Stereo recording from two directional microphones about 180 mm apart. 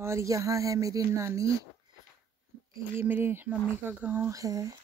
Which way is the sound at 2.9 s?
10° right (ahead or behind).